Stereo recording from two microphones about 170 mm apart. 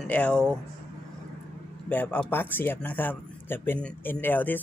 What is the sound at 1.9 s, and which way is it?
Speech, 10° left (ahead or behind).